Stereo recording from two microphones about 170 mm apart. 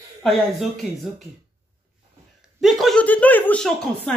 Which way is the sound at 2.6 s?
Centre (ahead or behind).